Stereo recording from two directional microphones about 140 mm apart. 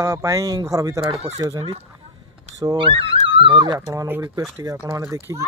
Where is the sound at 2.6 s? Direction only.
35° right (ahead or behind).